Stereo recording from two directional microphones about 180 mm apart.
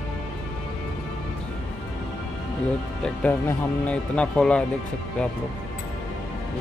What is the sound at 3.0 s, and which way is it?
Speech, 10° left (ahead or behind).